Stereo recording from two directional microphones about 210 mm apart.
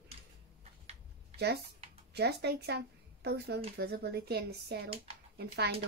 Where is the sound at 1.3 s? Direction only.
50° right (ahead or behind).